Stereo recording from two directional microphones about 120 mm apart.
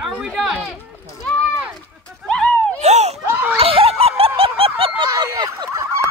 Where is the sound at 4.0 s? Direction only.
55° right (ahead or behind).